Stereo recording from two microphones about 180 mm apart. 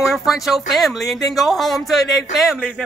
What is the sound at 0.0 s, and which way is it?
Speech, centre (ahead or behind).